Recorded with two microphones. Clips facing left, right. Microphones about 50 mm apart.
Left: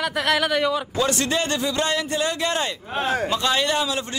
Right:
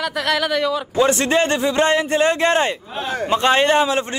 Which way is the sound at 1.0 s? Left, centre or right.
Right.